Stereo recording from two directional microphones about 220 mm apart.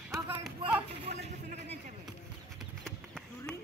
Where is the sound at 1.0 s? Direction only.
30° right (ahead or behind).